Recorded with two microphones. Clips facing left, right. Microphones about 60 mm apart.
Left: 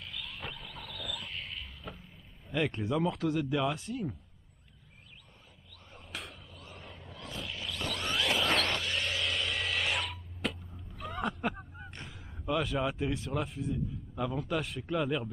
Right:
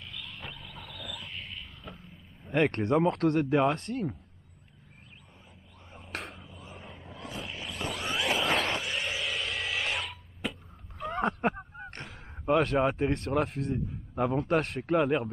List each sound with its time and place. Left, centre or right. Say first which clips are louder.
0.0 s wild animals: left 1 dB; centre
2.5 s speech: right 6 dB; right
6.3 s vehicle: right 3 dB; centre
9.0 s a sound: even; centre
11.1 s a sound: right 5 dB; right
11.9 s speech: right 3 dB; right
14.5 s speech: right 6 dB; right
14.8 s speech: right 6 dB; right